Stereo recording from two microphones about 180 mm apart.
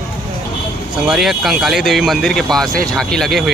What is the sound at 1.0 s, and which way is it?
Speech, centre (ahead or behind).